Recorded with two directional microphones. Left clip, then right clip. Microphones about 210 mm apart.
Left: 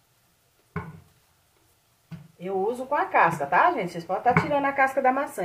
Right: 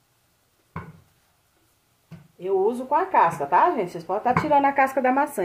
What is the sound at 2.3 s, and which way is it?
A woman's voice, 45° right (ahead or behind).